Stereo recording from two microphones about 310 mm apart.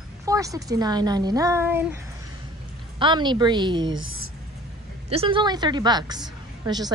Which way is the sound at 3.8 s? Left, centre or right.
Right.